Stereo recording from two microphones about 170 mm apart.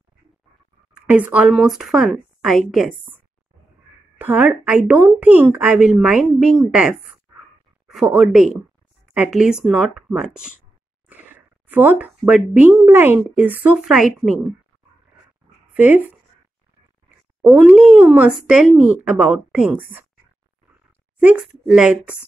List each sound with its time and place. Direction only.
1.0 s a woman's voice: 10° right (ahead or behind)
4.2 s a woman's voice: 10° right (ahead or behind)
15.7 s speech: 10° right (ahead or behind)
17.4 s speech: 10° right (ahead or behind)
21.2 s a woman's voice: 5° right (ahead or behind)